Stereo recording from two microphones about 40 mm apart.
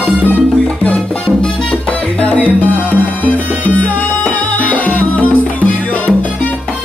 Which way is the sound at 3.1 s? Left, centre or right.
Left.